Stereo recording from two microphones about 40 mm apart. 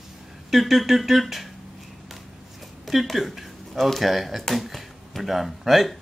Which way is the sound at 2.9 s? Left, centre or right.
Centre.